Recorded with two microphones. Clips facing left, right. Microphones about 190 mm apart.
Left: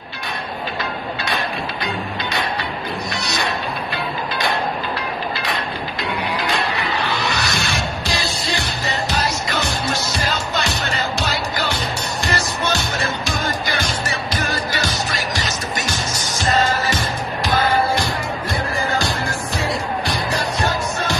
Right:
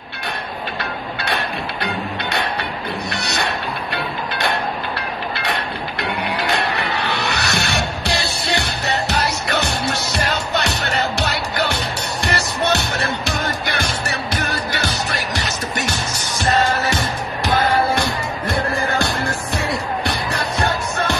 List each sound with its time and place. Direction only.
0.7 s music: 65° right (ahead or behind)
3.1 s music: 65° right (ahead or behind)